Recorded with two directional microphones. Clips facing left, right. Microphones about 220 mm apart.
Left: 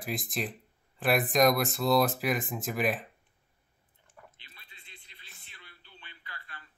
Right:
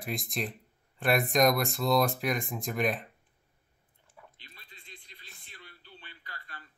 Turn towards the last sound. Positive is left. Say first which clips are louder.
# right 1 dB
turn(degrees=-45)  # may be behind; listen again after turning